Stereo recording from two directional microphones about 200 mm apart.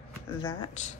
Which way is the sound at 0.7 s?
35° left (ahead or behind).